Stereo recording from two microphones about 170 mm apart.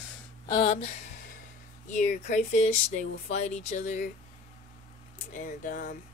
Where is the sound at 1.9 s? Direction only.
45° left (ahead or behind).